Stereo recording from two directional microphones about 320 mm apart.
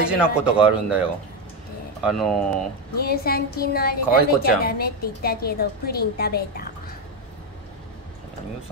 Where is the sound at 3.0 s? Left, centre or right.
Left.